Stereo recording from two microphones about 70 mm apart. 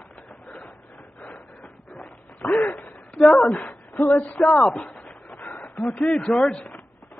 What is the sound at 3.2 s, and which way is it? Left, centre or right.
Speech, centre.